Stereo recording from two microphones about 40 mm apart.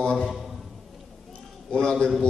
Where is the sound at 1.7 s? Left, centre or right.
Left.